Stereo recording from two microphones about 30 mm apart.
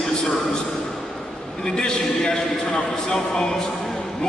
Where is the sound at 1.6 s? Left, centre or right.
Left.